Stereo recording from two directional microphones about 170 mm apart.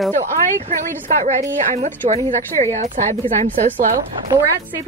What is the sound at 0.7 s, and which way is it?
Speech, 45° right (ahead or behind).